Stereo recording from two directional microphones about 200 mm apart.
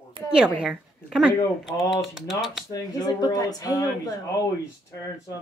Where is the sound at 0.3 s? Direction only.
5° right (ahead or behind).